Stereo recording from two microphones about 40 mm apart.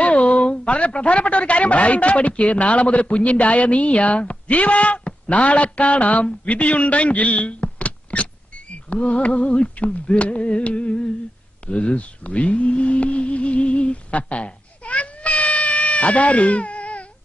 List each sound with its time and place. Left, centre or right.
0.0 s a man's voice: left